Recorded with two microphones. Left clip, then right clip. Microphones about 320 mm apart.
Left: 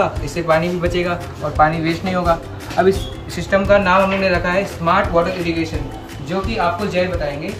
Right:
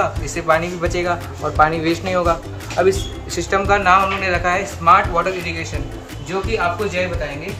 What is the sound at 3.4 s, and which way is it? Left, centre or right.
A man's voice, centre.